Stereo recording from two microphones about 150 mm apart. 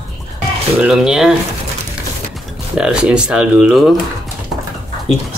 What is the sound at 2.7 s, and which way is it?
Speech, 5° right (ahead or behind).